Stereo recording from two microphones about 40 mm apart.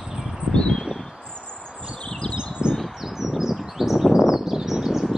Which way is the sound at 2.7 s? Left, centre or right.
Centre.